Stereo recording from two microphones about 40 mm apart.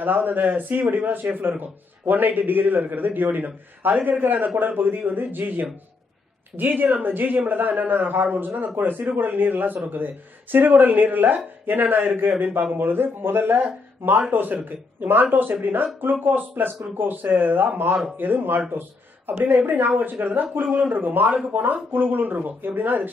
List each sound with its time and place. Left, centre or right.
0.0 s a man's voice: right
14.3 s speech: right